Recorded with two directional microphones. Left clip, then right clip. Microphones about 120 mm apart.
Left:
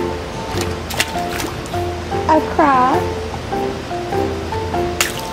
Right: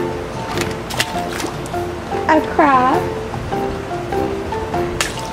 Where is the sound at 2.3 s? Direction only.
40° right (ahead or behind).